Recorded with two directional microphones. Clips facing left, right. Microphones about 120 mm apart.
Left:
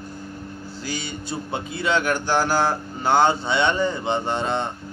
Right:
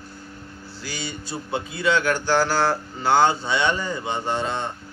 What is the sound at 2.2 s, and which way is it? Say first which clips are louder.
Speech: right 1 dB; 15° left (ahead or behind).